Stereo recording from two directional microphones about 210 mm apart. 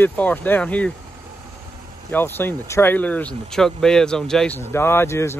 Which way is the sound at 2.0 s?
10° left (ahead or behind).